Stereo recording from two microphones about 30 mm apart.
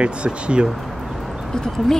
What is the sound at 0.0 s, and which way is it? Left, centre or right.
Speech, right.